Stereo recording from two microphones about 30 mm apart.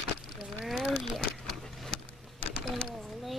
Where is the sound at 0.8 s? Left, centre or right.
Centre.